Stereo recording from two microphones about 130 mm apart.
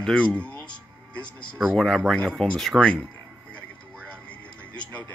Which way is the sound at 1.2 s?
35° left (ahead or behind).